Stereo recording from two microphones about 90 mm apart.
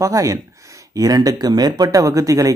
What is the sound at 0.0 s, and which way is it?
Speech, 40° right (ahead or behind).